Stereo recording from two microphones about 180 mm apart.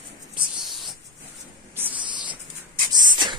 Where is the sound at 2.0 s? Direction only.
25° right (ahead or behind).